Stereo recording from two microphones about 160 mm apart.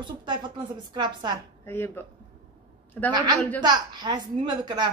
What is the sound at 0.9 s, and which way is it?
Speech, 30° right (ahead or behind).